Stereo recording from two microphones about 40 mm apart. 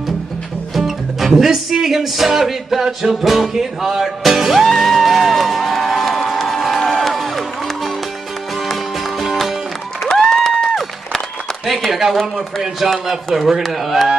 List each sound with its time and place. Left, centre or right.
0.7 s speech: centre
4.6 s music: centre
10.0 s applause: centre
10.6 s run: centre
11.6 s speech: centre